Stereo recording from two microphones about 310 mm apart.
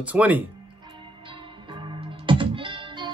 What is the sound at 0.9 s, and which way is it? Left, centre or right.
Music, centre.